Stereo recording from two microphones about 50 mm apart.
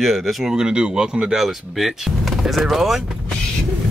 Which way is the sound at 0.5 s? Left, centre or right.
Centre.